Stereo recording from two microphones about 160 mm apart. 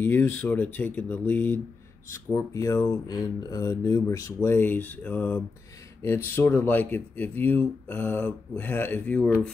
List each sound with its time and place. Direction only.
0.0 s speech: 15° left (ahead or behind)